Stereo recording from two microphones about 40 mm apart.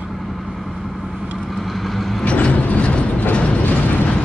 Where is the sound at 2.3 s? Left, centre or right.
Left.